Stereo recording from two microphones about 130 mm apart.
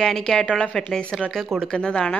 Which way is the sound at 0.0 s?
5° left (ahead or behind).